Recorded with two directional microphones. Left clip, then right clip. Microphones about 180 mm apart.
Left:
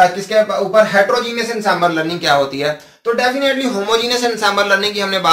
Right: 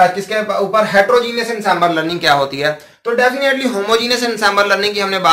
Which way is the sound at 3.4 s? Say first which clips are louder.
Right 1 dB; 20° right (ahead or behind).